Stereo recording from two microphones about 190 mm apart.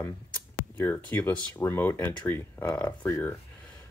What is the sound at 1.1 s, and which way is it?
Speech, 10° left (ahead or behind).